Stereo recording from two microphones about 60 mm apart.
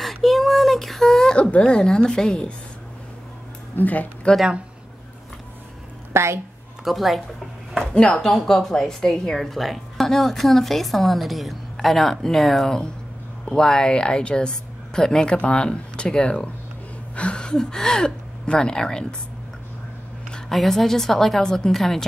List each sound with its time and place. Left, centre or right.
0.0 s a sound: centre
1.3 s speech: left
1.6 s a woman's voice: centre
3.7 s speech: left
6.1 s a woman's voice: right
6.8 s a woman's voice: centre
7.9 s a woman's voice: centre
20.2 s a woman's voice: centre